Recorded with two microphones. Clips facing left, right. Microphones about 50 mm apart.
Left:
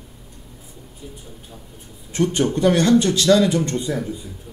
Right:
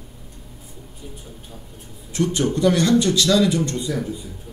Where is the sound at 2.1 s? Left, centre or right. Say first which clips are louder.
Left 1 dB; left.